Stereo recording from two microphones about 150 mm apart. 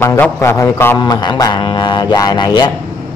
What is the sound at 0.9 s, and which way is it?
A man's voice, 30° left (ahead or behind).